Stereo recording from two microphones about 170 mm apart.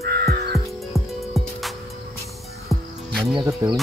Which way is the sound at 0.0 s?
65° right (ahead or behind).